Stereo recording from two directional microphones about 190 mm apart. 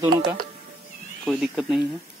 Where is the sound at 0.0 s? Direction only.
15° right (ahead or behind).